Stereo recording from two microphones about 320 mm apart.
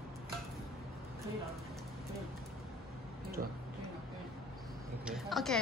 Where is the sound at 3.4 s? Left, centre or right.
Right.